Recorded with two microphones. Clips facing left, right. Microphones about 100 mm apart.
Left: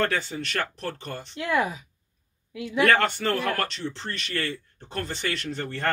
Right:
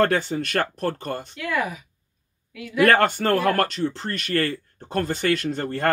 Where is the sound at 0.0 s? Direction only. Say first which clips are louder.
Right 6 dB; 40° right (ahead or behind).